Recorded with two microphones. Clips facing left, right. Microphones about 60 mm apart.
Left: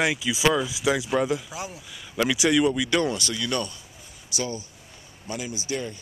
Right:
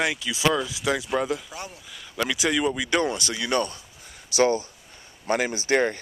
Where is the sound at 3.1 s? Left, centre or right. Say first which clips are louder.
Right 2 dB; right.